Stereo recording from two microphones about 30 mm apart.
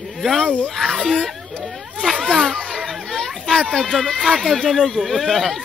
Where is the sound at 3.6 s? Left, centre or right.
Left.